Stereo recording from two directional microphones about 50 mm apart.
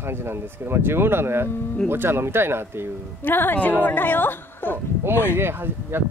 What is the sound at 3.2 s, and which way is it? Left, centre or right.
A woman's voice, left.